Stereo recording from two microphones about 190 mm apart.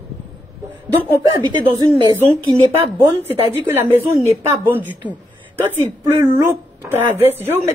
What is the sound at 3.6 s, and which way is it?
Speech, 10° right (ahead or behind).